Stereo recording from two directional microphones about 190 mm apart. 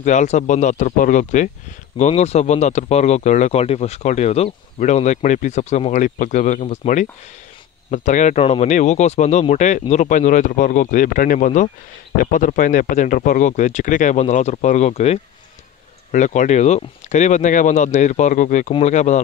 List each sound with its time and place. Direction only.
0.0 s speech: 40° left (ahead or behind)